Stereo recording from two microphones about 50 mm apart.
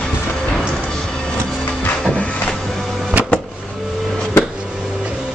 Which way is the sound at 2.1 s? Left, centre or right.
Left.